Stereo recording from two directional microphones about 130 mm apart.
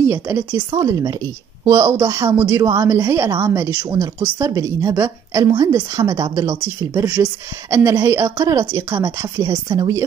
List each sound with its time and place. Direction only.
0.0 s a woman's voice: 20° right (ahead or behind)